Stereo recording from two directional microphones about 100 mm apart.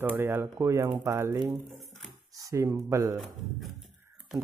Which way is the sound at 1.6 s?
Centre (ahead or behind).